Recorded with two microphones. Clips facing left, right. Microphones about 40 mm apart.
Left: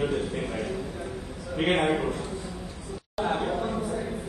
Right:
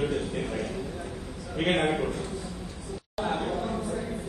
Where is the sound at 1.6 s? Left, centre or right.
Centre.